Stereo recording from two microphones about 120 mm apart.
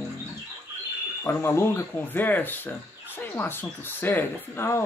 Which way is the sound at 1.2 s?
20° left (ahead or behind).